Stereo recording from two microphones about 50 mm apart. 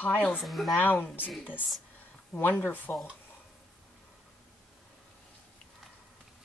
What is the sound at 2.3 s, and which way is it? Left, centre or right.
Speech, left.